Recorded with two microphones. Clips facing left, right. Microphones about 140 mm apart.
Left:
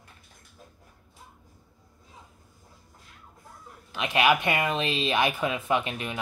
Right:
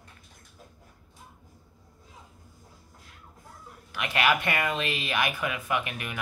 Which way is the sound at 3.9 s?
20° left (ahead or behind).